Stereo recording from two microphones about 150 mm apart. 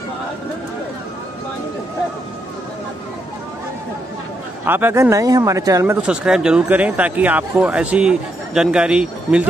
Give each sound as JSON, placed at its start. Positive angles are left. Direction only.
{"t": 4.6, "sound": "speech", "side_deg": -15}
{"t": 6.0, "sound": "speech", "side_deg": -5}